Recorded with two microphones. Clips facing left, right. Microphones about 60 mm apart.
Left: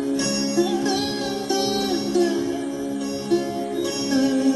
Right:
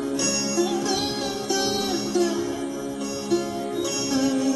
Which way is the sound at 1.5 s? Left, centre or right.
Left.